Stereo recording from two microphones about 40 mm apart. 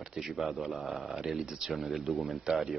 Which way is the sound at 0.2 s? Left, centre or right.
Centre.